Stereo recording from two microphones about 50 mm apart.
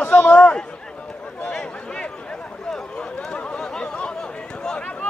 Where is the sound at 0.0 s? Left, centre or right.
Left.